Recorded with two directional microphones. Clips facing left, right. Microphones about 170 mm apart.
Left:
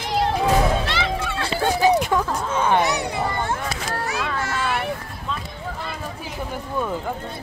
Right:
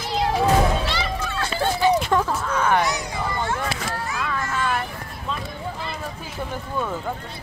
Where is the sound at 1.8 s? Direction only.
40° left (ahead or behind).